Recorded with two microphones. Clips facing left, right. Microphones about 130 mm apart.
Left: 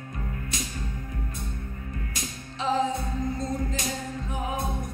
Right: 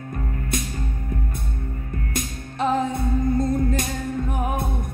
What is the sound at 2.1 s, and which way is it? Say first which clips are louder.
Music: right 7 dB; 55° right (ahead or behind).